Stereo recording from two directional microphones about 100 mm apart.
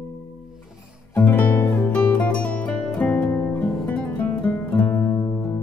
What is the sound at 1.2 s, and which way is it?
Music, 15° left (ahead or behind).